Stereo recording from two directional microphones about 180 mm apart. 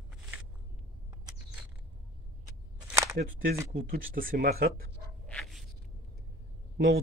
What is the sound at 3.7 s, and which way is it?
Speech, 50° right (ahead or behind).